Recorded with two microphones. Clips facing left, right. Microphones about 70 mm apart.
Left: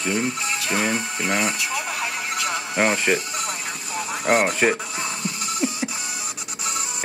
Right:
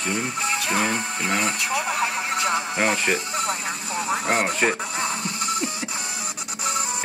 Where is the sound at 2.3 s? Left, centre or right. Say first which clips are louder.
Right 2 dB; right.